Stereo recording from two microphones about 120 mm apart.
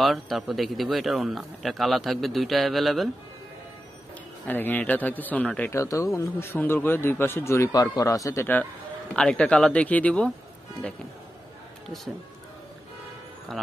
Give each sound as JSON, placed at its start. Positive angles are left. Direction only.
{"t": 0.0, "sound": "speech", "side_deg": 0}
{"t": 4.5, "sound": "speech", "side_deg": 15}
{"t": 5.7, "sound": "speech", "side_deg": 25}
{"t": 9.1, "sound": "speech", "side_deg": 10}